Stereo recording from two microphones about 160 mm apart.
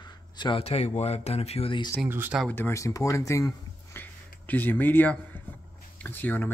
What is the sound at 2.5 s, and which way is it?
Speech, 15° left (ahead or behind).